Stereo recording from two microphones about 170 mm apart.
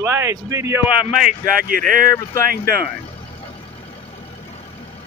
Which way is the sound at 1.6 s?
55° right (ahead or behind).